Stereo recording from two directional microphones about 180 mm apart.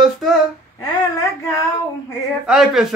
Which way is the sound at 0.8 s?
20° left (ahead or behind).